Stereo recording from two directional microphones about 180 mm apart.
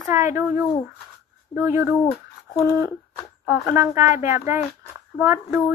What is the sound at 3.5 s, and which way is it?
Speech, 15° right (ahead or behind).